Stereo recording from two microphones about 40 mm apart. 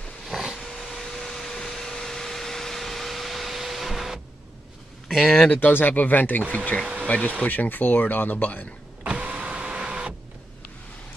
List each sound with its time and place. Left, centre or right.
0.2 s a sound: centre
0.6 s vacuum cleaner: centre
5.1 s speech: centre
5.7 s speech: left
6.5 s speech: left
7.1 s speech: left
9.0 s power windows: right